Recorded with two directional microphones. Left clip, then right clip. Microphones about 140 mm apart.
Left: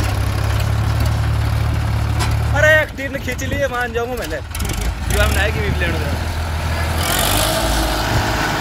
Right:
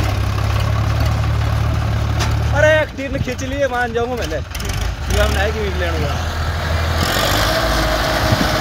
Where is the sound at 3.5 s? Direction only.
60° right (ahead or behind).